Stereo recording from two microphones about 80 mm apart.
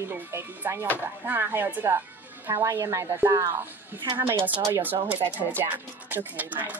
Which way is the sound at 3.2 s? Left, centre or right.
Right.